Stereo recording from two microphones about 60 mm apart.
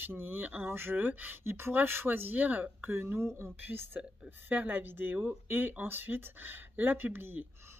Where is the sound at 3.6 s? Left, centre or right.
Right.